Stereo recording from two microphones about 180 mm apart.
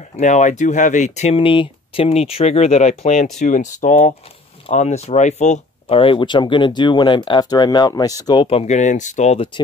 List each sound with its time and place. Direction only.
0.1 s speech: 40° left (ahead or behind)